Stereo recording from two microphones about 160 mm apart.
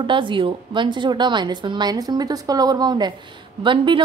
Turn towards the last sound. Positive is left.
turn(degrees=-30)  # may be behind; listen again after turning